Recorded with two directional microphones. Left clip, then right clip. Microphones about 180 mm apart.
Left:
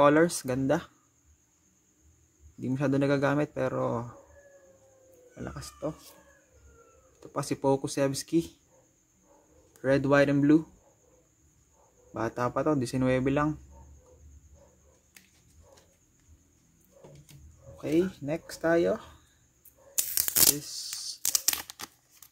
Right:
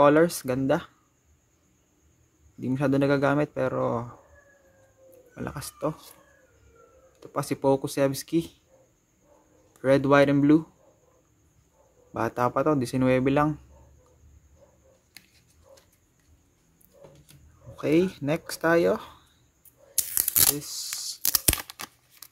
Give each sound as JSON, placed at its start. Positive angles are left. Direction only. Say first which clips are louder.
{"t": 0.0, "sound": "speech", "louder": "right 3 dB", "side_deg": -10}
{"t": 2.6, "sound": "speech", "louder": "right 3 dB", "side_deg": -10}
{"t": 5.3, "sound": "speech", "louder": "right 5 dB", "side_deg": -25}
{"t": 7.2, "sound": "speech", "louder": "right 3 dB", "side_deg": -10}
{"t": 9.8, "sound": "speech", "louder": "right 4 dB", "side_deg": -15}
{"t": 12.1, "sound": "speech", "louder": "right 5 dB", "side_deg": -20}
{"t": 17.7, "sound": "speech", "louder": "right 4 dB", "side_deg": -35}
{"t": 20.4, "sound": "tearing", "louder": "even", "side_deg": -15}